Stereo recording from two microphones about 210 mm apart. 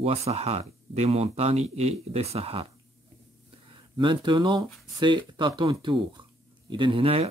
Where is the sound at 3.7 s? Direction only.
20° right (ahead or behind).